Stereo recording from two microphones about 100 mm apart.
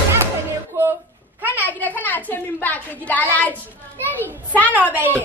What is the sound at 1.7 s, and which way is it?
A child's voice, 15° left (ahead or behind).